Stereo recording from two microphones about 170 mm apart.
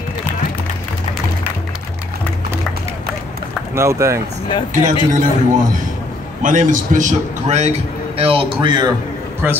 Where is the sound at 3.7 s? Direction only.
15° right (ahead or behind).